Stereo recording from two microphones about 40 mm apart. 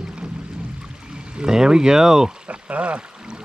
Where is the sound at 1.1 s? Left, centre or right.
Right.